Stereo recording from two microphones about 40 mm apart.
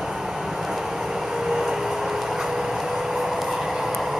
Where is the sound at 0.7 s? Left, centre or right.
Centre.